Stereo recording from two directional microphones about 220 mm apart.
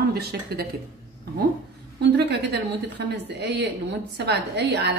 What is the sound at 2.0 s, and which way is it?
A woman's voice, 50° right (ahead or behind).